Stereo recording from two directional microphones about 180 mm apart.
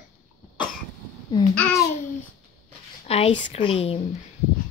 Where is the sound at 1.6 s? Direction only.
15° left (ahead or behind).